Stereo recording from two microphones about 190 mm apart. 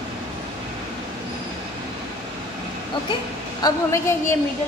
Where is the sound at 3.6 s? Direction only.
20° left (ahead or behind).